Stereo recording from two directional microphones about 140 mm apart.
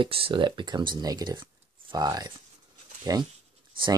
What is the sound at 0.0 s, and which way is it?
Speech, 40° right (ahead or behind).